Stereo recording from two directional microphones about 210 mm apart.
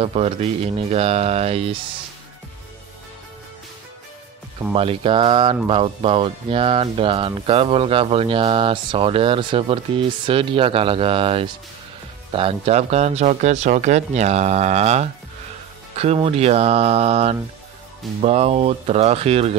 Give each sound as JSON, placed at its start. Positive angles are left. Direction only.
{"t": 0.0, "sound": "speech", "side_deg": -30}
{"t": 4.7, "sound": "speech", "side_deg": -25}